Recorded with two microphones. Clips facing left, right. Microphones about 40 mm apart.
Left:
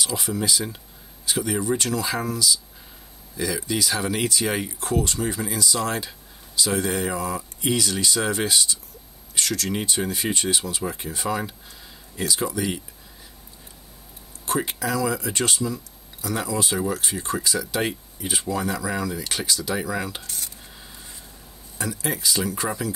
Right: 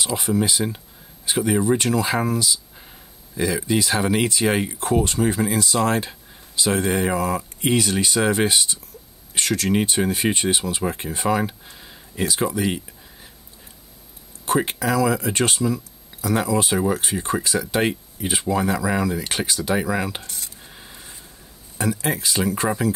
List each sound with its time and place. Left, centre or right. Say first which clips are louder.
0.0 s speech: right 4 dB; right
7.1 s speech: right 5 dB; right
14.4 s speech: right 4 dB; right
20.7 s a sound: right 2 dB; centre
21.7 s speech: right 5 dB; right